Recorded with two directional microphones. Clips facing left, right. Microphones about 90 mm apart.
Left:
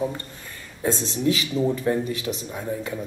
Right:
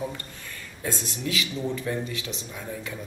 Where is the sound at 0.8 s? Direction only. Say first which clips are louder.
Left 8 dB; 30° left (ahead or behind).